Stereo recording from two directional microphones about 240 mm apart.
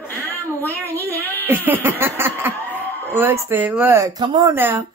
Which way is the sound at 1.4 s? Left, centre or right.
Centre.